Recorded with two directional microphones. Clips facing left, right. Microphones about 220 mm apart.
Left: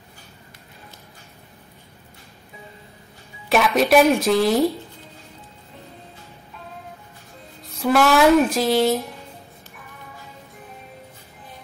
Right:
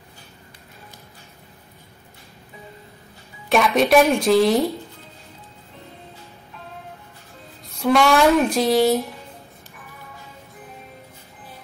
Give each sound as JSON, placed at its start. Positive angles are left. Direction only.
{"t": 3.4, "sound": "speech", "side_deg": 0}
{"t": 7.6, "sound": "speech", "side_deg": 0}